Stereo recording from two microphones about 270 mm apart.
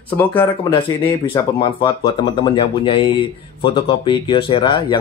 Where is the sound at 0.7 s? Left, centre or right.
Centre.